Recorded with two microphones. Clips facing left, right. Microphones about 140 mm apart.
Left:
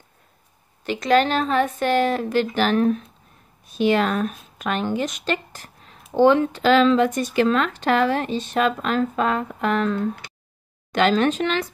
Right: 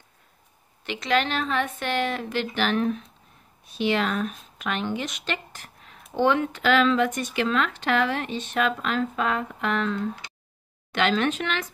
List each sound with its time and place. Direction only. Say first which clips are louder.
0.8 s speech: left 6 dB; 40° left (ahead or behind)
10.9 s speech: left 5 dB; 40° left (ahead or behind)